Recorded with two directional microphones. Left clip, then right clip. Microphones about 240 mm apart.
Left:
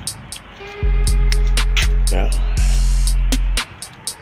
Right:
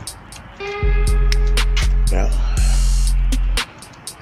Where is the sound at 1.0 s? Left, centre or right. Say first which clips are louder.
Right 1 dB; centre.